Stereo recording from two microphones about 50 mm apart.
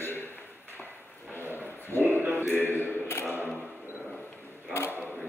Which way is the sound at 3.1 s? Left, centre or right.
Left.